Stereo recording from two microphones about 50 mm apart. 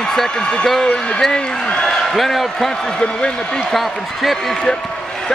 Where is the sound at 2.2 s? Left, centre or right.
Centre.